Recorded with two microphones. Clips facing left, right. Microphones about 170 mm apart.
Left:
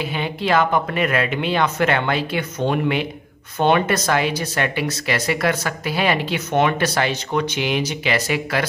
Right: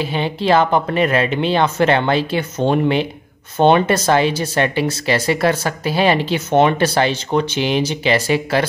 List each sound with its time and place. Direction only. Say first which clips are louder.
0.0 s speech: right 4 dB; 30° right (ahead or behind)